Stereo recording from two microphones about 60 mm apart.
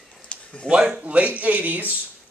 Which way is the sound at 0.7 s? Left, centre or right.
Centre.